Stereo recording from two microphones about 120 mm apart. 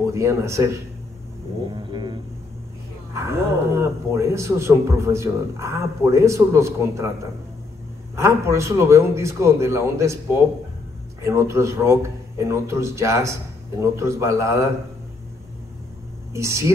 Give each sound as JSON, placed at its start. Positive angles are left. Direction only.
{"t": 0.0, "sound": "a man's voice", "side_deg": -25}
{"t": 1.7, "sound": "a sound", "side_deg": -40}
{"t": 3.2, "sound": "a man's voice", "side_deg": -20}
{"t": 8.2, "sound": "a man's voice", "side_deg": -25}
{"t": 16.3, "sound": "a man's voice", "side_deg": -25}